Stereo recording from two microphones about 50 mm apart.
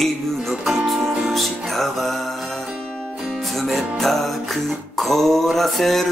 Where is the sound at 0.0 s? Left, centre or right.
Centre.